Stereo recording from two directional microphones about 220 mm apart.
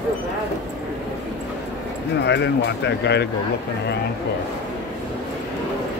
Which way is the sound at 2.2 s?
50° left (ahead or behind).